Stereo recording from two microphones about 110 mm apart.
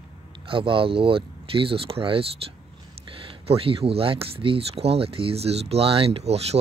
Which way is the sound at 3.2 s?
60° right (ahead or behind).